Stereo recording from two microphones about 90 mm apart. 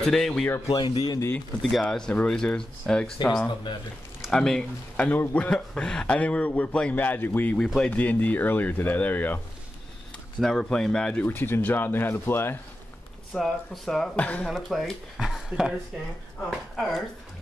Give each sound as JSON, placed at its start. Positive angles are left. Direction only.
{"t": 0.0, "sound": "speech", "side_deg": 5}
{"t": 0.7, "sound": "speech", "side_deg": 60}
{"t": 1.6, "sound": "a man's voice", "side_deg": 0}
{"t": 4.3, "sound": "a man's voice", "side_deg": 5}
{"t": 7.5, "sound": "speech", "side_deg": 10}
{"t": 10.4, "sound": "a man's voice", "side_deg": 5}
{"t": 11.2, "sound": "speech", "side_deg": 25}
{"t": 13.3, "sound": "speech", "side_deg": 5}
{"t": 14.1, "sound": "a man's voice", "side_deg": 15}
{"t": 14.5, "sound": "speech", "side_deg": 0}